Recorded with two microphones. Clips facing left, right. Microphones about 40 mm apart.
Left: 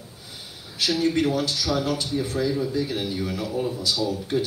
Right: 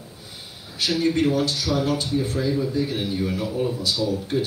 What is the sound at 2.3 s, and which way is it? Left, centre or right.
Speech, centre.